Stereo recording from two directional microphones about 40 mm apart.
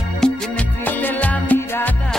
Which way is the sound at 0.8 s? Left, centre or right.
Left.